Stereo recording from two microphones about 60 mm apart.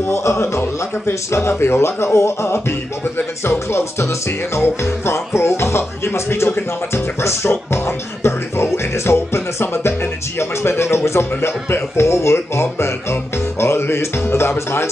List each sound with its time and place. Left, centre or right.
0.0 s speech: left